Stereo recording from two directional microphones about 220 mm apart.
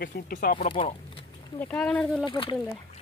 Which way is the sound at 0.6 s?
25° left (ahead or behind).